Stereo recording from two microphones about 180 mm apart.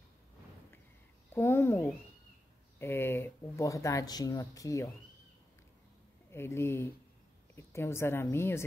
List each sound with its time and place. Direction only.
1.3 s speech: 15° left (ahead or behind)
6.3 s speech: 15° left (ahead or behind)